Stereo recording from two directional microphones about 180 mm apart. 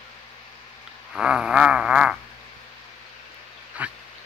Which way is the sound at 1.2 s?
5° right (ahead or behind).